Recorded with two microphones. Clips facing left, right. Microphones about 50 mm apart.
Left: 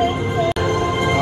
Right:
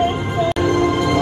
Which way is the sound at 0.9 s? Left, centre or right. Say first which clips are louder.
Right 2 dB; left.